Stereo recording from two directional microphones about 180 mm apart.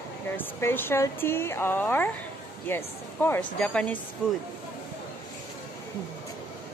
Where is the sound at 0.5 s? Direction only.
15° left (ahead or behind).